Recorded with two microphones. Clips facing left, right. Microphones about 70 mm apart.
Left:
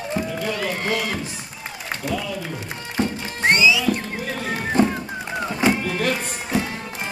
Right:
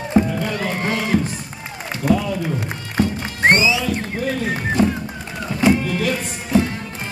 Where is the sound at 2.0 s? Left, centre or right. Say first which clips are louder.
Right 9 dB; right.